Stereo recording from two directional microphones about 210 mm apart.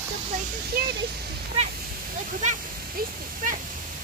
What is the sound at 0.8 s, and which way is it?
Speech, 45° right (ahead or behind).